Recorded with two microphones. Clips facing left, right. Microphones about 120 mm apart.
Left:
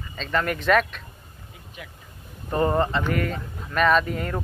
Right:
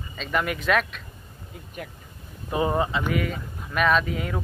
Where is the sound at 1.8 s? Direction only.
50° right (ahead or behind).